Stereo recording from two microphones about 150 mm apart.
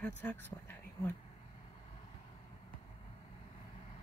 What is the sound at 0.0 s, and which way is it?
Speech, 10° left (ahead or behind).